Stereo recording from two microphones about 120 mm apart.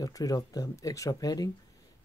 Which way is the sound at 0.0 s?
30° left (ahead or behind).